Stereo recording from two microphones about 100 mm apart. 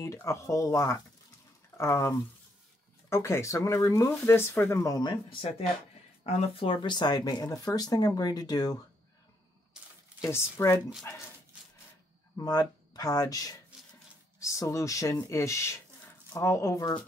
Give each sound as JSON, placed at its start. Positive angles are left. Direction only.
{"t": 0.0, "sound": "speech", "side_deg": 30}
{"t": 6.2, "sound": "speech", "side_deg": 90}
{"t": 10.2, "sound": "speech", "side_deg": 30}
{"t": 12.4, "sound": "speech", "side_deg": 40}